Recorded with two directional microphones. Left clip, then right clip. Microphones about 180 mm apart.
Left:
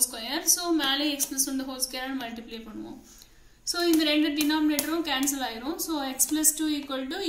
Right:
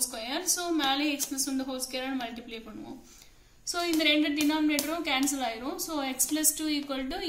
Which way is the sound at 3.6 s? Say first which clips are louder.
Left 2 dB; 40° right (ahead or behind).